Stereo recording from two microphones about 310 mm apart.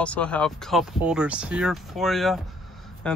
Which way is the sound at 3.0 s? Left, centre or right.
Centre.